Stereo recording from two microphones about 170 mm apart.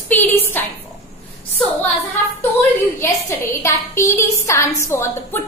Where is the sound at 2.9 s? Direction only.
15° left (ahead or behind).